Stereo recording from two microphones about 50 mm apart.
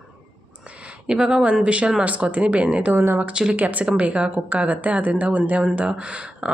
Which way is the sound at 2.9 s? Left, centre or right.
Right.